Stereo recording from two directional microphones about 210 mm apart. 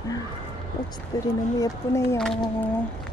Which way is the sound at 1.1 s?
20° left (ahead or behind).